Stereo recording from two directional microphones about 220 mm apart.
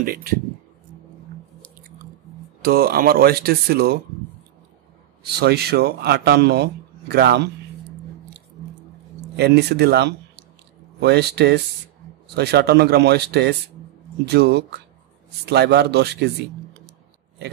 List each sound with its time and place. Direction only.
0.0 s speech: 40° right (ahead or behind)
2.6 s speech: 45° right (ahead or behind)
5.2 s speech: 45° right (ahead or behind)
9.4 s speech: 50° right (ahead or behind)